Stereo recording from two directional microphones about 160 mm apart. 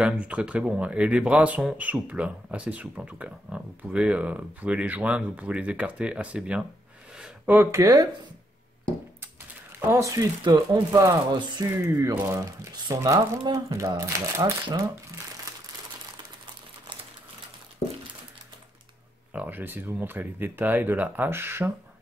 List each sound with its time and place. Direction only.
0.0 s speech: 5° right (ahead or behind)
9.8 s speech: 15° right (ahead or behind)
19.3 s speech: 10° right (ahead or behind)